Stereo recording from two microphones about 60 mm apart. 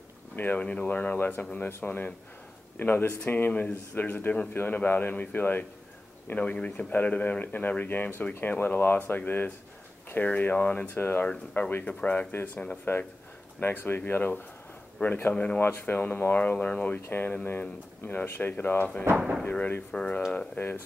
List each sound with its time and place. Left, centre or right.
0.4 s speech: left
11.2 s speech: left
15.3 s speech: centre
15.6 s speech: left
16.5 s speech: centre
19.1 s speech: centre
19.9 s speech: centre
20.6 s speech: left